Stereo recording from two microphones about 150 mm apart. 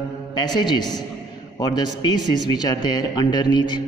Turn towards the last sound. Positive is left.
turn(degrees=30)  # may be behind; listen again after turning